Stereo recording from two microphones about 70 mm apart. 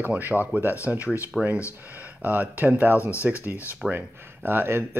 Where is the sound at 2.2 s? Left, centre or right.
Right.